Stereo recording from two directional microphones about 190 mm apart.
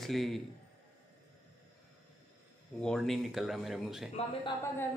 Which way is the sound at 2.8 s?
Centre (ahead or behind).